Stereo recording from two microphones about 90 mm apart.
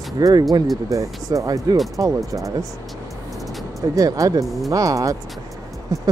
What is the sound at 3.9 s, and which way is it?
Speech, 40° right (ahead or behind).